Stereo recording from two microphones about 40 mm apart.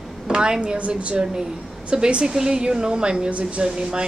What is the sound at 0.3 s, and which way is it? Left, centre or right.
A woman's voice, right.